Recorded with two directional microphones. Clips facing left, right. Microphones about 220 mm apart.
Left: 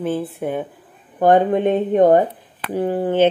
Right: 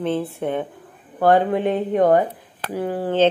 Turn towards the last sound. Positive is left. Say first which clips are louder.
# left 3 dB
turn(degrees=20)  # may be behind; listen again after turning